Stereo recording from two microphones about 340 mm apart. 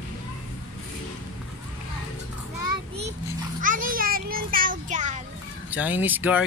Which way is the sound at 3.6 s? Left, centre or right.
Right.